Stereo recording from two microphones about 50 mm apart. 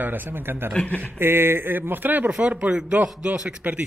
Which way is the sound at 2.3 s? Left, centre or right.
Right.